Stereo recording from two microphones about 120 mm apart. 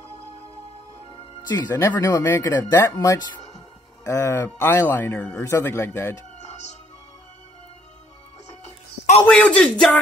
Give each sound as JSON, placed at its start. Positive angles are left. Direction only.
{"t": 1.5, "sound": "speech", "side_deg": 35}
{"t": 1.8, "sound": "speech", "side_deg": 20}
{"t": 9.2, "sound": "a man's voice", "side_deg": 10}